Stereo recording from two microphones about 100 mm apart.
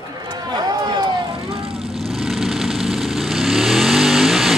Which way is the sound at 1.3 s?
70° right (ahead or behind).